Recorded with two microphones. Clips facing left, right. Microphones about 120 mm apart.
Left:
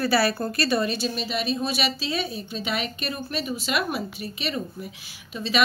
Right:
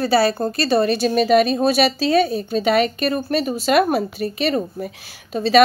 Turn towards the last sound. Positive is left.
turn(degrees=-40)  # may be behind; listen again after turning